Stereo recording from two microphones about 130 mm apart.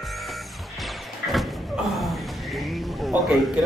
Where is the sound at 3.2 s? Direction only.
Centre (ahead or behind).